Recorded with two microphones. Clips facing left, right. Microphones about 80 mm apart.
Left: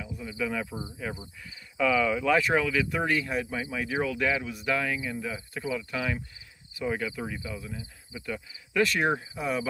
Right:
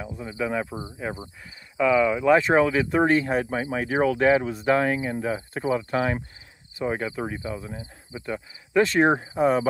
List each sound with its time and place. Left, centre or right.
0.1 s speech: right
6.7 s speech: right